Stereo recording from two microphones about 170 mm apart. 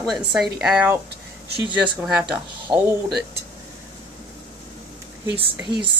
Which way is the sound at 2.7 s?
30° right (ahead or behind).